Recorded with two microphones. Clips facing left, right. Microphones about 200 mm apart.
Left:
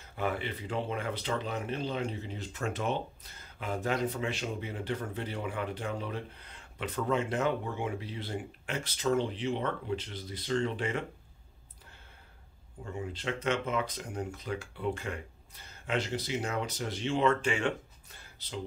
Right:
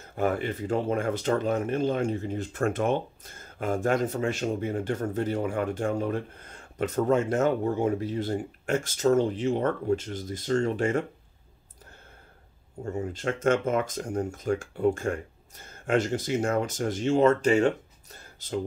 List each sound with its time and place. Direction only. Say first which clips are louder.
0.0 s speech: right 7 dB; 45° right (ahead or behind)
12.8 s speech: right 7 dB; 45° right (ahead or behind)